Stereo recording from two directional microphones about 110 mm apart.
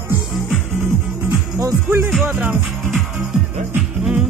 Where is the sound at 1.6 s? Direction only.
20° right (ahead or behind).